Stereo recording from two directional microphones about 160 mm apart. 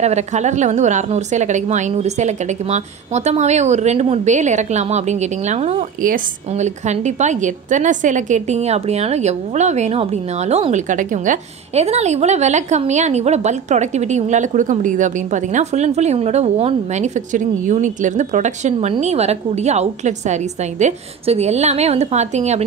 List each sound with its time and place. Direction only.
0.0 s a woman's voice: 45° right (ahead or behind)